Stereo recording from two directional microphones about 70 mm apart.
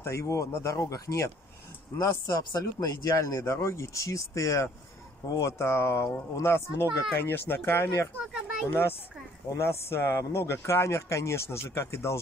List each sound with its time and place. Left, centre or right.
0.0 s speech: left
8.3 s children playing: centre
8.6 s speech: left